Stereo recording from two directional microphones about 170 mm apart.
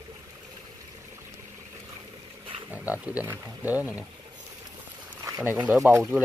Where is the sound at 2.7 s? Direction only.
10° right (ahead or behind).